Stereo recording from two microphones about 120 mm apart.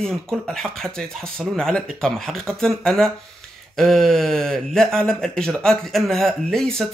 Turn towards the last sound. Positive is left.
turn(degrees=5)  # may be behind; listen again after turning